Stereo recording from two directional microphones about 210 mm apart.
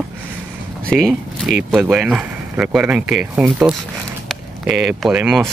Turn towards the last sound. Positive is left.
turn(degrees=-5)  # may be behind; listen again after turning